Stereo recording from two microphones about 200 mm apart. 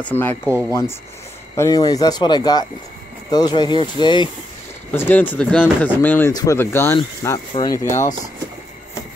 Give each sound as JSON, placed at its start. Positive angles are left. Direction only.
{"t": 0.0, "sound": "speech", "side_deg": 10}
{"t": 0.5, "sound": "speech", "side_deg": -15}
{"t": 1.6, "sound": "speech", "side_deg": 20}
{"t": 4.9, "sound": "speech", "side_deg": 10}
{"t": 7.0, "sound": "speech", "side_deg": 25}